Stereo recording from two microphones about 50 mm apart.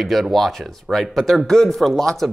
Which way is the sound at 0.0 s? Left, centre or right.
Centre.